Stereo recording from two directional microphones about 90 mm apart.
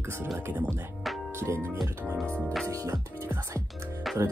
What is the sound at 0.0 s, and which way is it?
Speech, 30° right (ahead or behind).